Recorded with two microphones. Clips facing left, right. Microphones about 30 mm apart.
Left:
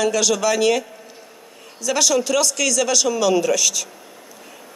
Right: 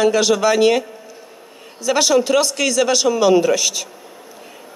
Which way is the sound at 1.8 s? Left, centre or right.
Right.